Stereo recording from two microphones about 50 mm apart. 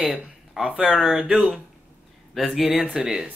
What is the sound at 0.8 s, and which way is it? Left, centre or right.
Speech, centre.